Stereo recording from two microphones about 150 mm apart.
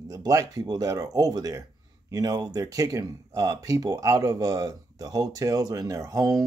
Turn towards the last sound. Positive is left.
turn(degrees=-20)  # may be behind; listen again after turning